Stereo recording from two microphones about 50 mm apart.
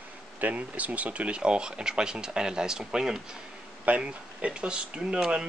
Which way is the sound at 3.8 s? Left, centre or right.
Right.